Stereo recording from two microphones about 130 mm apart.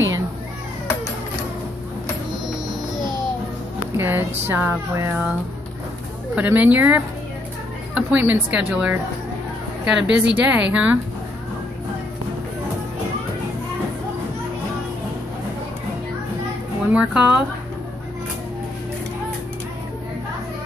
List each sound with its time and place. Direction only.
3.9 s speech: 20° right (ahead or behind)
6.3 s speech: 10° right (ahead or behind)
16.9 s speech: 10° right (ahead or behind)